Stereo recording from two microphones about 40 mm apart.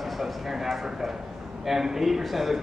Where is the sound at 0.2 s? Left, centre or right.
Centre.